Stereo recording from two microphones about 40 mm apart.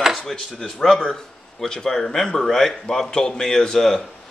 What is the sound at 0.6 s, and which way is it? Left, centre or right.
Speech, centre.